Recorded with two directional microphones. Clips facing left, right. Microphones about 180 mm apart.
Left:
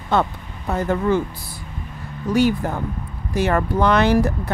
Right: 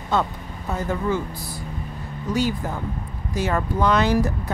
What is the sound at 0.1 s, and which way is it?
Speech, 60° left (ahead or behind).